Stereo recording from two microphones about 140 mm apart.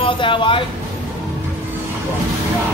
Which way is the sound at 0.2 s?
35° left (ahead or behind).